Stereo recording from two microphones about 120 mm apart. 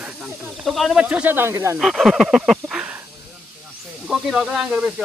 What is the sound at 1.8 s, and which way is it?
Speech, centre (ahead or behind).